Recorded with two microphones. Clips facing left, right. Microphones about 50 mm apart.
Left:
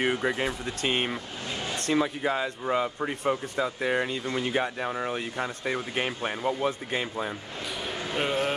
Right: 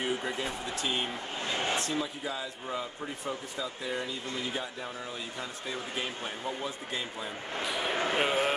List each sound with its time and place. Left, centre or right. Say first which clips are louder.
0.0 s speech: left 6 dB; left
1.5 s speech: right 2 dB; right
1.9 s speech: left 8 dB; left
7.6 s speech: right 2 dB; centre
7.9 s a sound: right 4 dB; right
8.2 s speech: left 3 dB; centre